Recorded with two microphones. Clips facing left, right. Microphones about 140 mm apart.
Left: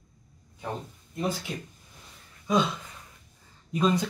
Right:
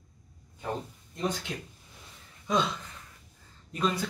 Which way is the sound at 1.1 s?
5° left (ahead or behind).